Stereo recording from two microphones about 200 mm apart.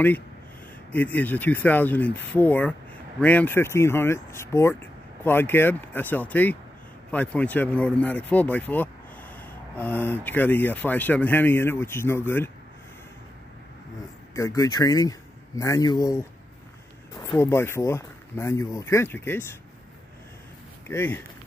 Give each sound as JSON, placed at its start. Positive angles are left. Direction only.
{"t": 0.9, "sound": "speech", "side_deg": 10}
{"t": 14.3, "sound": "a man's voice", "side_deg": 15}
{"t": 17.4, "sound": "speech", "side_deg": 10}
{"t": 20.9, "sound": "speech", "side_deg": 10}